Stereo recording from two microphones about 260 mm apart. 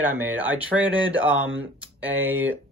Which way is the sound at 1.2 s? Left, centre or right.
Right.